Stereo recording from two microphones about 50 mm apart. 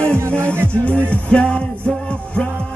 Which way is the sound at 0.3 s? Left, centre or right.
Left.